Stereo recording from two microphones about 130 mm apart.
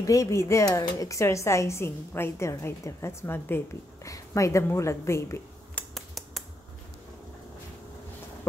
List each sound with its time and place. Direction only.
0.0 s speech: 25° left (ahead or behind)
5.9 s finger snapping: centre (ahead or behind)